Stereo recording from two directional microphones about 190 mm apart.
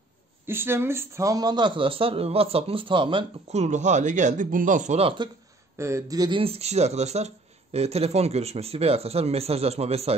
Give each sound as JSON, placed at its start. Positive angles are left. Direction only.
{"t": 0.5, "sound": "a man's voice", "side_deg": -10}
{"t": 5.8, "sound": "speech", "side_deg": -15}